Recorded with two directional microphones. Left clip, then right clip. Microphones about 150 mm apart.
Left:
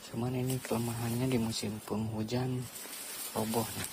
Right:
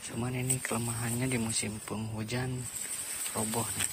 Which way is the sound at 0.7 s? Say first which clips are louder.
Even; 30° left (ahead or behind).